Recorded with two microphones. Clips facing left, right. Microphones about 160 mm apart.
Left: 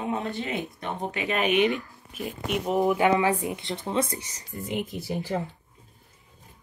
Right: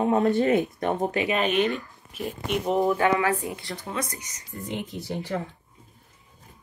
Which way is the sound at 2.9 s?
20° left (ahead or behind).